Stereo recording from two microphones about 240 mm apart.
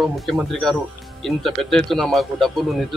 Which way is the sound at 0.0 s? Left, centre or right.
Centre.